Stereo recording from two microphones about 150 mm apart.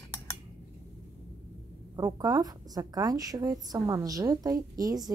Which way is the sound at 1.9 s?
25° right (ahead or behind).